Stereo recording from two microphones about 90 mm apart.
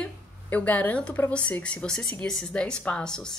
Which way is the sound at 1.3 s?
15° left (ahead or behind).